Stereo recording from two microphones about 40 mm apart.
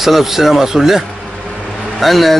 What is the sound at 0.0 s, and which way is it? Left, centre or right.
Speech, centre.